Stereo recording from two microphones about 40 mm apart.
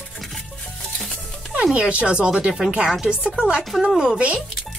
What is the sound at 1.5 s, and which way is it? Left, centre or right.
Speech, right.